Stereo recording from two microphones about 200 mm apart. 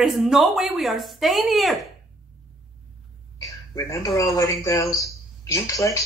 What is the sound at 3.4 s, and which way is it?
Speech, 15° left (ahead or behind).